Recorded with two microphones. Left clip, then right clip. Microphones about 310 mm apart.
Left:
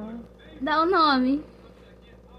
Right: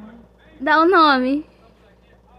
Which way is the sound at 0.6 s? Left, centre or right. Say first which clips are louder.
Right 7 dB; right.